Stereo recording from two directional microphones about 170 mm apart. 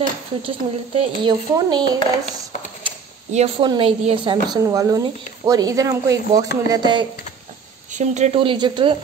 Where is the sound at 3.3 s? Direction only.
40° right (ahead or behind).